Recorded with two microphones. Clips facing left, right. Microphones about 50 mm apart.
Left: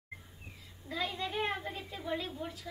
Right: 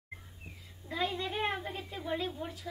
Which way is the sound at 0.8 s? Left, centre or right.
Right.